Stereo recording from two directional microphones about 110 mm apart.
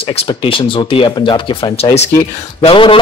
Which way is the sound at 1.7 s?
65° left (ahead or behind).